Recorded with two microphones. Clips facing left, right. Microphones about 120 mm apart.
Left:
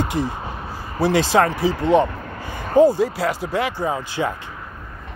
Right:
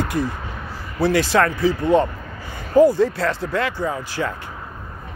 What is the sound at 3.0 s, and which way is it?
Speech, 10° left (ahead or behind).